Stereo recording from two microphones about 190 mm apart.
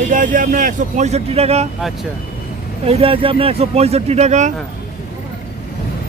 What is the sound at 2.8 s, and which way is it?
Speech, 30° right (ahead or behind).